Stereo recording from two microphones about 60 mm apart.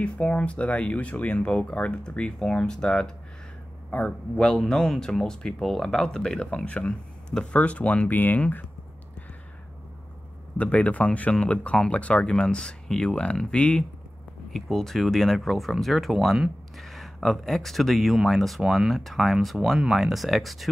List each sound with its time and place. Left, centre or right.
0.0 s a man's voice: centre
4.4 s speech: centre; by 8.6 s left
10.6 s speech: left
14.5 s speech: centre